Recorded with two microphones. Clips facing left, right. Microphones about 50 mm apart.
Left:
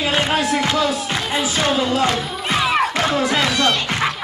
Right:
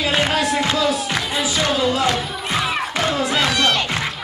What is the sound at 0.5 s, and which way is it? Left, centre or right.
Music, right.